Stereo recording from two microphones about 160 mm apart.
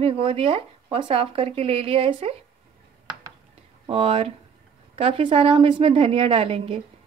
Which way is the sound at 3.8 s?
35° right (ahead or behind).